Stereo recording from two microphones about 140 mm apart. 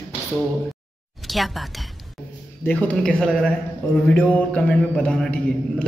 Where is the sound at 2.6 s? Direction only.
10° left (ahead or behind).